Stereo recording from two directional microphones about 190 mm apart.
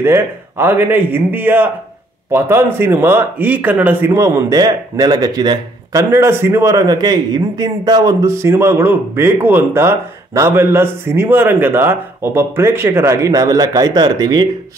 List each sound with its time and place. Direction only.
0.0 s speech: 10° right (ahead or behind)